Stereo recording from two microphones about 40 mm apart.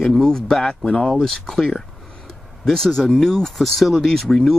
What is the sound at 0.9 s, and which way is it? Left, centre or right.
Speech, left.